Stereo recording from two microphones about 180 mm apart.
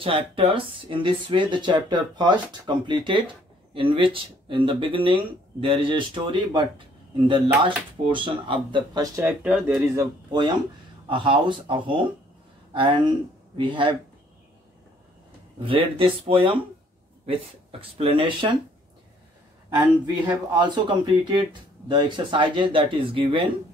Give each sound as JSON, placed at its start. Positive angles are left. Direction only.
{"t": 0.0, "sound": "speech", "side_deg": -30}
{"t": 10.3, "sound": "speech", "side_deg": -25}
{"t": 15.6, "sound": "speech", "side_deg": -30}
{"t": 20.5, "sound": "speech", "side_deg": -25}